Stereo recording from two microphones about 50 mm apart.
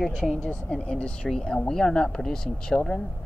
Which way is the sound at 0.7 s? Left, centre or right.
Left.